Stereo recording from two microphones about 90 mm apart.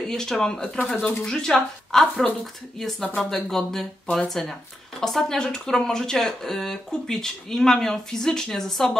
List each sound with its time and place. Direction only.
0.1 s speech: 5° left (ahead or behind)